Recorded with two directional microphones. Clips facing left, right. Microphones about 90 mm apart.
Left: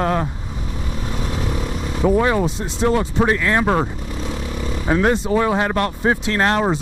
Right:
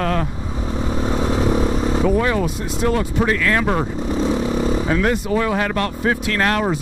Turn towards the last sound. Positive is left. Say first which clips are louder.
# left 1 dB
turn(degrees=25)  # may be behind; listen again after turning